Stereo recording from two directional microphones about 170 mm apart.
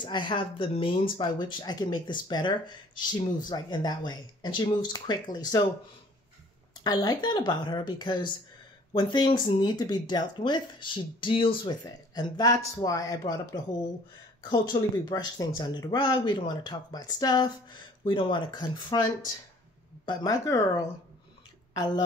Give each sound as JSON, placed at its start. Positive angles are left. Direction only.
{"t": 0.0, "sound": "speech", "side_deg": 25}
{"t": 6.8, "sound": "speech", "side_deg": 25}